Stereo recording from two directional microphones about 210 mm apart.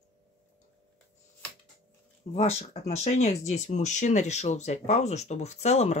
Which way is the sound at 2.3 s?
30° left (ahead or behind).